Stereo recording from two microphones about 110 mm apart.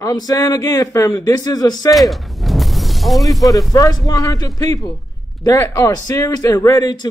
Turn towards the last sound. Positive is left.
turn(degrees=35)  # may be behind; listen again after turning